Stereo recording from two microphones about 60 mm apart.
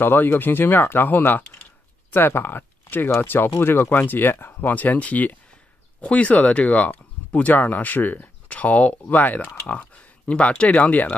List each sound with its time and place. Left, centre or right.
0.0 s speech: left